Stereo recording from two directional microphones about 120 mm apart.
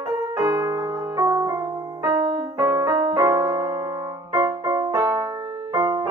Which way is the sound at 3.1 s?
25° right (ahead or behind).